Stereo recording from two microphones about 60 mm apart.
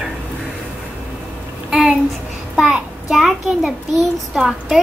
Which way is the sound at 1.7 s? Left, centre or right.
Centre.